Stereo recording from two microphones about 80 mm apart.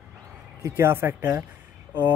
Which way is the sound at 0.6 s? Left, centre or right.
Right.